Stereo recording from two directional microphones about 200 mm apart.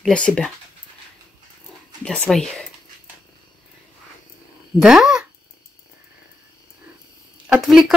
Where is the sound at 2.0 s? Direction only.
5° left (ahead or behind).